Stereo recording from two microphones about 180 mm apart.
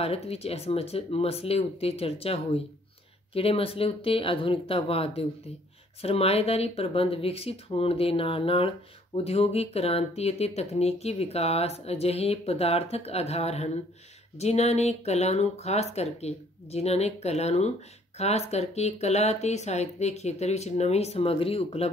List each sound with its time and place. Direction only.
0.0 s speech: 35° left (ahead or behind)